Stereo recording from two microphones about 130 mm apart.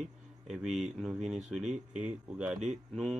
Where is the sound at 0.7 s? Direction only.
65° right (ahead or behind).